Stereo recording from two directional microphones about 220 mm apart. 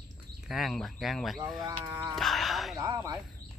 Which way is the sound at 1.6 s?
15° right (ahead or behind).